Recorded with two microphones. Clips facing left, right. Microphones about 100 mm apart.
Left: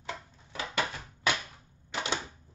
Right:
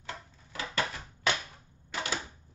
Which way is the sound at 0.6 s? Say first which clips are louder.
Left 1 dB; 20° left (ahead or behind).